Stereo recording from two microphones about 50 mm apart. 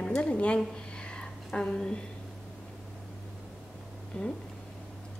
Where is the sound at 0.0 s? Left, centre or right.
Left.